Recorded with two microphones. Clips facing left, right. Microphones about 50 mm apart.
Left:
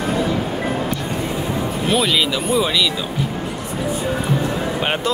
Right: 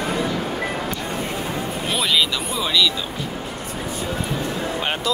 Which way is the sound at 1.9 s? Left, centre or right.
Centre.